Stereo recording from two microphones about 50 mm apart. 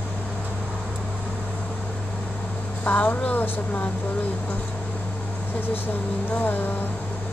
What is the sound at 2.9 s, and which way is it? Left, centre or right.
Speech, left.